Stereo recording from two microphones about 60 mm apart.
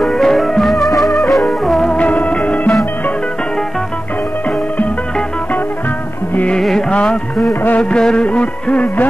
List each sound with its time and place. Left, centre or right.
0.0 s music: centre
1.9 s music: left
6.9 s music: centre
7.6 s music: left